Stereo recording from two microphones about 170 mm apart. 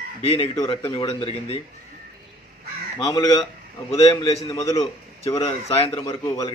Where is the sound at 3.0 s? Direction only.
25° left (ahead or behind).